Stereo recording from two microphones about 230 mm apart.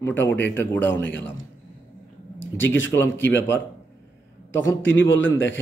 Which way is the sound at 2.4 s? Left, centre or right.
Left.